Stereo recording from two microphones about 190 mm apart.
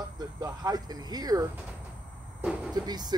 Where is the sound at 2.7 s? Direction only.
20° right (ahead or behind).